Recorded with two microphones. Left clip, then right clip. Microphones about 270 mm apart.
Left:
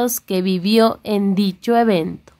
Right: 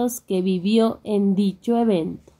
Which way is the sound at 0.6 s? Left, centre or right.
Left.